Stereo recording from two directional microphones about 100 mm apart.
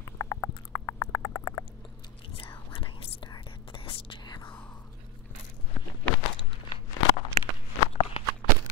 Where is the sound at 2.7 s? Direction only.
55° left (ahead or behind).